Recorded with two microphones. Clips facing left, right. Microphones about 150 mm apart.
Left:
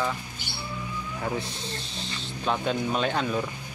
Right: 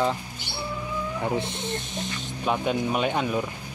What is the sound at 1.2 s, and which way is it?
Speech, 25° right (ahead or behind).